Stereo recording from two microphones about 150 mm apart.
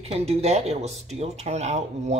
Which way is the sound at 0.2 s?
45° right (ahead or behind).